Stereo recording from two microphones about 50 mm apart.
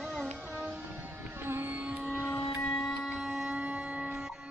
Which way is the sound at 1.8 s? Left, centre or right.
Right.